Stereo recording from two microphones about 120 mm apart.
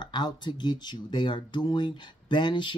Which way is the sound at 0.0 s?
40° left (ahead or behind).